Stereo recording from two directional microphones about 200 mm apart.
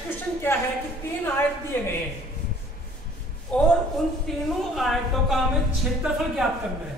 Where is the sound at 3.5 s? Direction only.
5° left (ahead or behind).